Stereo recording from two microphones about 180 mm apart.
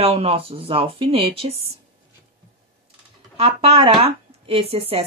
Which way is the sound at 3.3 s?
35° right (ahead or behind).